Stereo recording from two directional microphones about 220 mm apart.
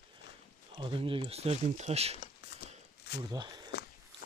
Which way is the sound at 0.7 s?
25° right (ahead or behind).